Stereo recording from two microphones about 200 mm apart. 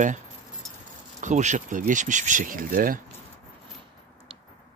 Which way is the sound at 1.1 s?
35° right (ahead or behind).